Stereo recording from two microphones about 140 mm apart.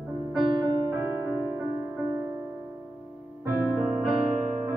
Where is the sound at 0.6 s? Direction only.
25° right (ahead or behind).